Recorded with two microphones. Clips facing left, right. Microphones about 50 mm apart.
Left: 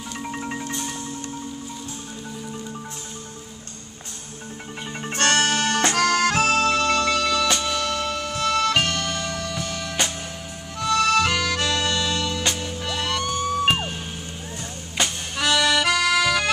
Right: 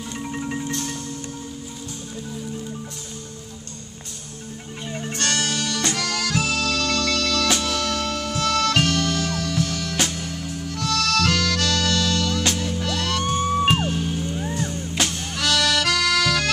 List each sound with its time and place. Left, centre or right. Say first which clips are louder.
0.2 s music: right 2 dB; centre
5.1 s music: left 5 dB; left; by 7.4 s centre
7.4 s music: even; centre
13.4 s music: right 3 dB; right
13.7 s music: right 2 dB; centre